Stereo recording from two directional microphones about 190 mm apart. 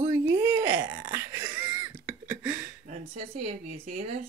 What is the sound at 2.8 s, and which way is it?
Speech, 40° right (ahead or behind).